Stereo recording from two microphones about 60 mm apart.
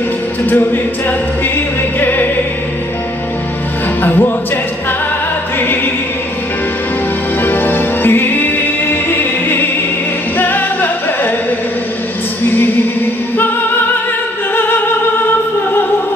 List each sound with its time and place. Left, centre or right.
2.0 s music: left
4.0 s music: left
7.4 s music: left
12.4 s music: left
14.5 s music: left